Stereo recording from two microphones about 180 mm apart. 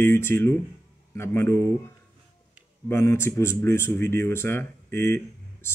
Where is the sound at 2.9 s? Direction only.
15° left (ahead or behind).